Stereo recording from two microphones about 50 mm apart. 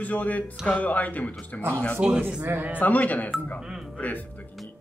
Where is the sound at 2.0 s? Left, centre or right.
Centre.